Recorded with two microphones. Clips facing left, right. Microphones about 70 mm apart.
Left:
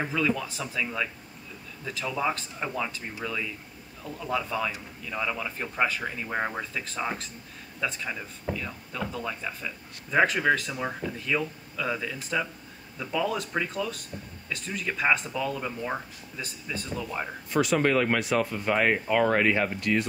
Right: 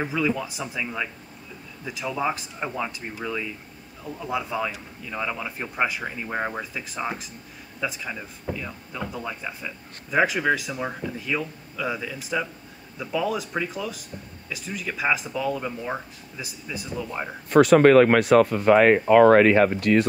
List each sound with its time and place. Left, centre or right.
0.0 s speech: centre
17.5 s speech: right